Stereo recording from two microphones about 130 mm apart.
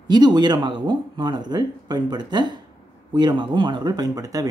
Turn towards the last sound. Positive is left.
turn(degrees=-25)  # may be behind; listen again after turning